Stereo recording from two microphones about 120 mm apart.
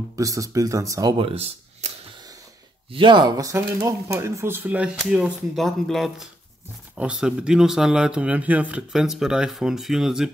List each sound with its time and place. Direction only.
0.1 s speech: 30° right (ahead or behind)
1.1 s speech: 50° right (ahead or behind)
2.9 s speech: 45° right (ahead or behind); by 10.3 s 5° right (ahead or behind)